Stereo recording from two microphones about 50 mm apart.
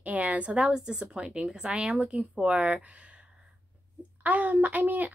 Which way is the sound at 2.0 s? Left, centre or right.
Right.